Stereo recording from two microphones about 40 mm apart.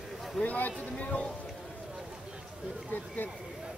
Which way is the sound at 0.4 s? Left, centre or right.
Left.